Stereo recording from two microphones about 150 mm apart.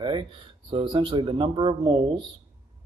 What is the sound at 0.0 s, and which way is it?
Speech, 35° right (ahead or behind).